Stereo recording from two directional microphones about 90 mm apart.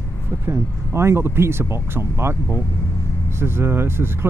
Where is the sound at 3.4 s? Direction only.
25° right (ahead or behind).